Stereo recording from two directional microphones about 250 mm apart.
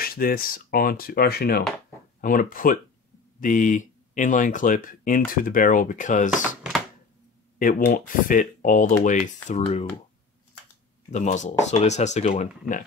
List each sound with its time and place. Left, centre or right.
0.0 s speech: left
7.5 s speech: left
11.1 s speech: left